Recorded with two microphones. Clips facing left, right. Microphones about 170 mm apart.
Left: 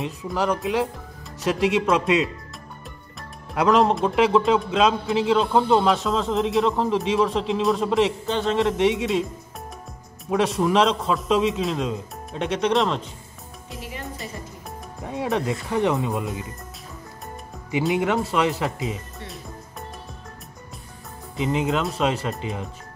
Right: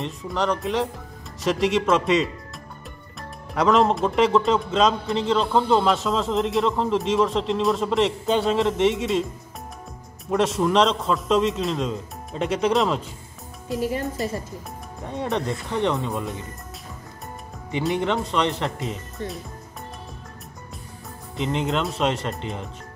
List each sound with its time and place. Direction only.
0.0 s speech: 5° left (ahead or behind)
10.3 s speech: centre (ahead or behind)
13.7 s speech: 40° right (ahead or behind)
15.0 s speech: 5° left (ahead or behind)
17.6 s speech: 5° left (ahead or behind)
21.4 s speech: 5° left (ahead or behind)